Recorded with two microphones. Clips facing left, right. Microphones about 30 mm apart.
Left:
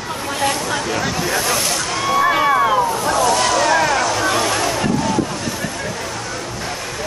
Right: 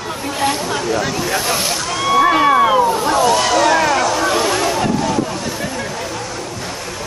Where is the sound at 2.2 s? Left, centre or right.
Centre.